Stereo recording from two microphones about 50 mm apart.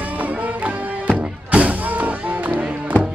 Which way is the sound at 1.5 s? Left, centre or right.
Right.